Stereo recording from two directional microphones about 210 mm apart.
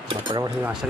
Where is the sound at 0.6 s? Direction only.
Centre (ahead or behind).